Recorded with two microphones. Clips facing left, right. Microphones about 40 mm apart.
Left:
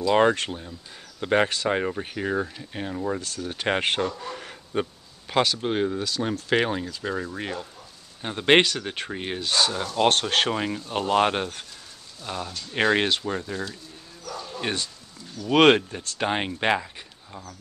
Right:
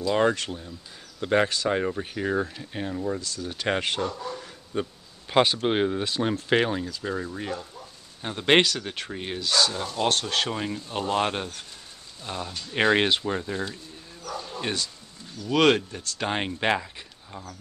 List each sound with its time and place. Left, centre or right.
0.1 s speech: left; by 3.0 s centre
3.2 s speech: left
3.8 s speech: left
5.4 s speech: right
6.7 s speech: centre
7.3 s speech: left
8.2 s speech: centre
10.0 s speech: left
10.5 s speech: centre
12.3 s speech: centre
14.3 s bow-wow: centre
14.6 s speech: centre
15.4 s speech: left
16.2 s speech: centre